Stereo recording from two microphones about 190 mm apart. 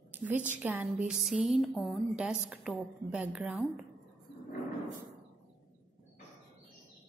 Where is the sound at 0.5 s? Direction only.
10° right (ahead or behind).